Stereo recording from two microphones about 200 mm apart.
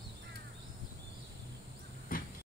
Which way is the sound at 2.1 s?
45° left (ahead or behind).